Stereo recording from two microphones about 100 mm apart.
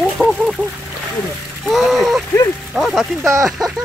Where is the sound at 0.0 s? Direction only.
5° right (ahead or behind).